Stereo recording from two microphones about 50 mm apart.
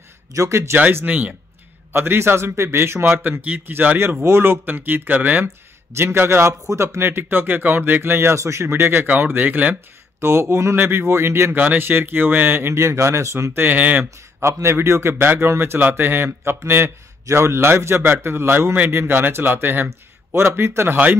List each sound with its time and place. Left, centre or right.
0.3 s speech: right
1.0 s speech: right
1.9 s speech: right
4.2 s speech: right
5.9 s a man's voice: right
7.0 s speech: right
9.0 s speech: right
10.2 s a man's voice: right
11.5 s speech: right
12.7 s speech: right
13.5 s speech: right
13.7 s speech: right
14.4 s a man's voice: right
20.9 s speech: right